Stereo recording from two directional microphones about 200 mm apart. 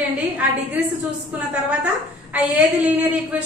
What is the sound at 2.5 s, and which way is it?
Speech, 5° right (ahead or behind).